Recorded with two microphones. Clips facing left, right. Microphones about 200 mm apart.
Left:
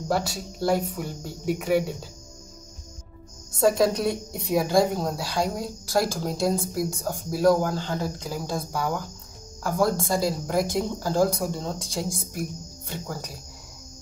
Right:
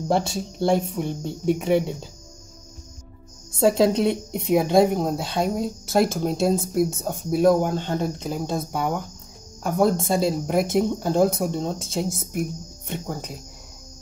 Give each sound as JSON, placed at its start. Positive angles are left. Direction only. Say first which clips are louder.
{"t": 0.1, "sound": "speech", "louder": "right 3 dB", "side_deg": -25}
{"t": 3.5, "sound": "speech", "louder": "right 3 dB", "side_deg": -25}